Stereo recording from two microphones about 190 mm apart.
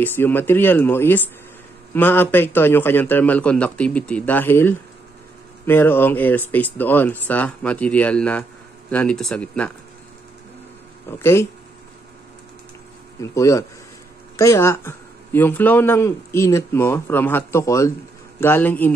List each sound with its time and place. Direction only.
0.0 s speech: 10° left (ahead or behind)
11.1 s speech: 10° left (ahead or behind)
13.2 s speech: 15° left (ahead or behind)